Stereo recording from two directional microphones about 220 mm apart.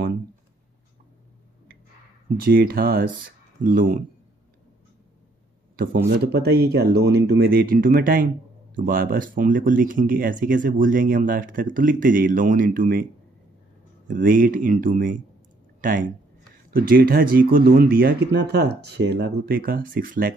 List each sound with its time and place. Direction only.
2.4 s speech: 40° right (ahead or behind)
6.0 s speech: 45° right (ahead or behind)
14.0 s speech: 35° right (ahead or behind)